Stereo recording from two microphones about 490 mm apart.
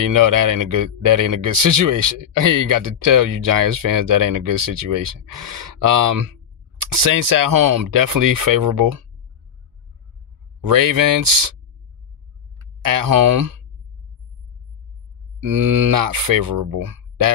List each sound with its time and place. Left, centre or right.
0.0 s speech: right
10.6 s speech: right
12.8 s speech: right
15.5 s speech: right